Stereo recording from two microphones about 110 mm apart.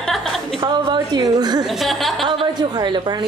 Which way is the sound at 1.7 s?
Centre (ahead or behind).